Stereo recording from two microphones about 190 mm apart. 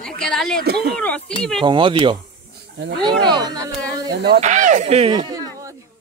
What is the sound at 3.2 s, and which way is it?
Speech, 20° right (ahead or behind).